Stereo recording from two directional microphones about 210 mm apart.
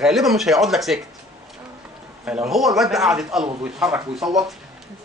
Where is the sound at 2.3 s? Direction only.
Centre (ahead or behind).